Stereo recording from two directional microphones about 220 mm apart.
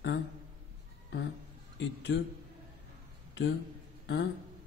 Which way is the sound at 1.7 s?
55° left (ahead or behind).